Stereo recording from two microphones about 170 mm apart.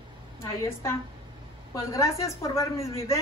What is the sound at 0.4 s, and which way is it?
A woman's voice, 15° left (ahead or behind).